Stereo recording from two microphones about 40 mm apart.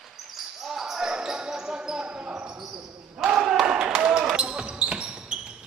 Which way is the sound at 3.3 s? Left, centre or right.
Centre.